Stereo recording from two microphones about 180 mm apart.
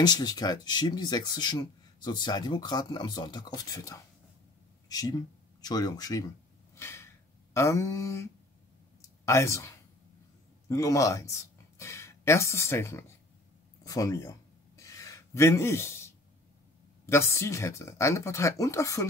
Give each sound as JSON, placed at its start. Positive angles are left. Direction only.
{"t": 0.0, "sound": "speech", "side_deg": 20}
{"t": 4.8, "sound": "a sound", "side_deg": 20}
{"t": 7.5, "sound": "speech", "side_deg": 15}
{"t": 9.0, "sound": "clicking", "side_deg": 15}
{"t": 10.7, "sound": "speech", "side_deg": 15}
{"t": 14.8, "sound": "a sound", "side_deg": 20}
{"t": 17.0, "sound": "speech", "side_deg": 15}